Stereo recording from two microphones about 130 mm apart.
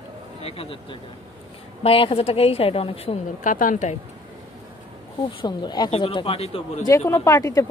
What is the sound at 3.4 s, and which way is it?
Speech, 90° left.